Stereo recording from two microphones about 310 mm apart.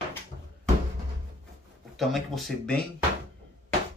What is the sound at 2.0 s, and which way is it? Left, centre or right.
Speech, centre.